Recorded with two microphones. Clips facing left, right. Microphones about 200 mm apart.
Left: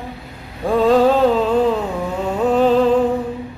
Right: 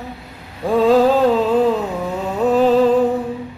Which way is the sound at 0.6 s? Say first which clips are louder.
Right 1 dB; centre (ahead or behind).